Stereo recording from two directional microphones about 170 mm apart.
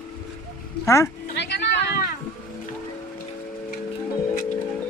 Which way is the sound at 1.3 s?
90° left.